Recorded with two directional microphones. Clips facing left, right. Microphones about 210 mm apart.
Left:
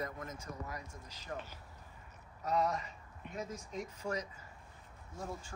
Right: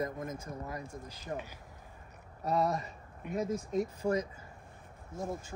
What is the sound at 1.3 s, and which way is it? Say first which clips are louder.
Speech: right 4 dB; 25° right (ahead or behind).